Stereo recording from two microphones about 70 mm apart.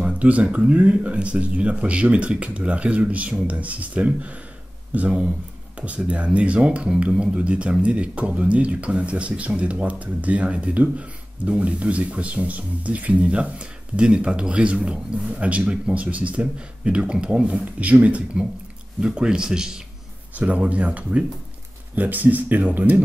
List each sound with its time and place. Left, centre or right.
0.0 s speech: centre
20.3 s speech: right